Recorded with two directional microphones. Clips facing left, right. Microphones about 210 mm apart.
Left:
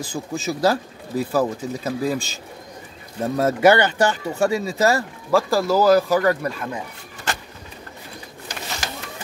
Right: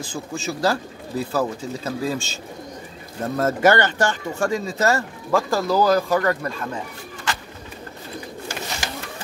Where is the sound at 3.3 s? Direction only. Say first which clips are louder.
Left 2 dB; 10° left (ahead or behind).